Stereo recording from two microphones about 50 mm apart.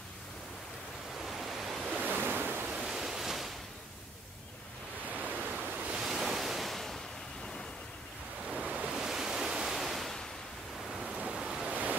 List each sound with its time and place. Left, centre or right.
1.1 s waves: centre
2.0 s waves: right
2.6 s waves: centre
5.2 s waves: right
5.9 s waves: centre
8.5 s waves: centre
8.9 s waves: centre
11.1 s waves: right
11.7 s waves: right